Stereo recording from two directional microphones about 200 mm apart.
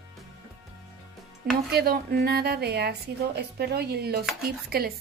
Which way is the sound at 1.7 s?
50° right (ahead or behind).